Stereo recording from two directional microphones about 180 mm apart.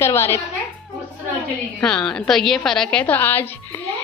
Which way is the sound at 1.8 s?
5° left (ahead or behind).